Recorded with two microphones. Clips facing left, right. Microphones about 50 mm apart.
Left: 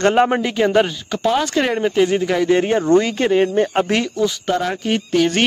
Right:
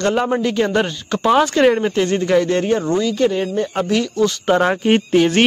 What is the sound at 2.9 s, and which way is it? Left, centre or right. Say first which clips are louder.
Speech: left 2 dB; left.